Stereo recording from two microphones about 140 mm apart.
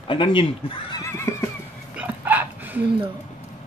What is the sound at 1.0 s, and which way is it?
Neigh, 20° left (ahead or behind).